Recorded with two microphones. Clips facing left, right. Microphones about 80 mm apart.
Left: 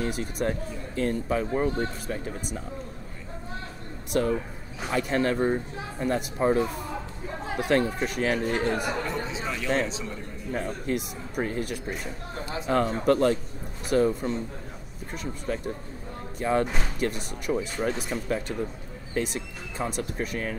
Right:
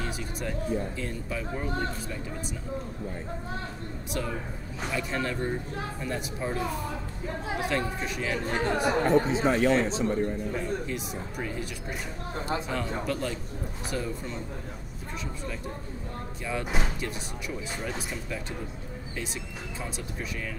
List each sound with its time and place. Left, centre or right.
0.0 s speech: left
4.1 s speech: left
7.6 s speech: left
9.0 s speech: right
10.5 s speech: left
16.3 s speech: left
16.6 s speech: centre
17.0 s speech: left
19.1 s speech: left